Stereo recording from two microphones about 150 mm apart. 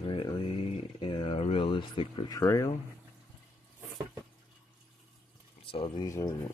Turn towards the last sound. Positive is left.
turn(degrees=20)  # may be behind; listen again after turning